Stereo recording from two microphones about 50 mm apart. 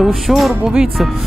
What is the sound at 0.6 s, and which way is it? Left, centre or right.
Music, centre.